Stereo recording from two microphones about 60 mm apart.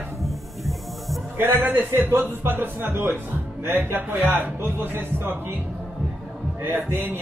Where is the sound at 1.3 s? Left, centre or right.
Right.